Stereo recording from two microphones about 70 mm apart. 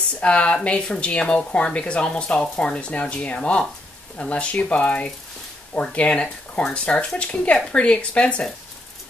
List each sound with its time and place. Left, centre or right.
0.2 s speech: centre